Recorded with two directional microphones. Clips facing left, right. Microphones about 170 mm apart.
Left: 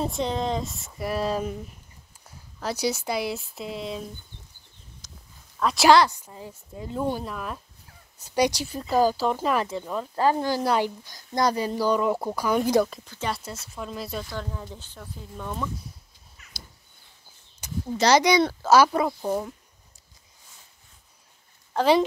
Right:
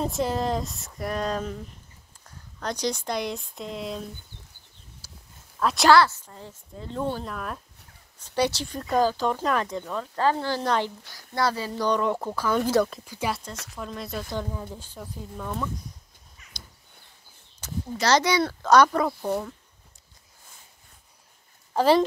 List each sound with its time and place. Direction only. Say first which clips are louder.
0.0 s speech: right 1 dB; centre (ahead or behind)
5.0 s a sound: even; 10° right (ahead or behind)
5.6 s speech: left 1 dB; centre (ahead or behind)
5.9 s speech: left 1 dB; 15° left (ahead or behind)
8.2 s speech: left 2 dB; 10° left (ahead or behind)
13.0 s speech: right 1 dB; 10° right (ahead or behind)
13.7 s speech: left 1 dB; 5° left (ahead or behind)
14.3 s speech: right 3 dB; 15° right (ahead or behind)
17.6 s speech: left 3 dB; 10° left (ahead or behind)
21.7 s speech: even; 5° right (ahead or behind)